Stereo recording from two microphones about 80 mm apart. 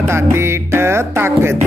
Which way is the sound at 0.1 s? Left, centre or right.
Right.